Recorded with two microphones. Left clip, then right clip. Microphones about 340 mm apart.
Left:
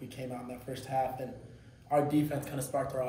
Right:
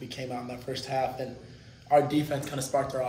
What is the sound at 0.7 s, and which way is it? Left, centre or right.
A man's voice, centre.